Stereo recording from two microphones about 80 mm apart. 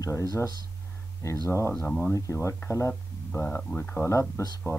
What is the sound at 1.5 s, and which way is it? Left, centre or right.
Speech, left.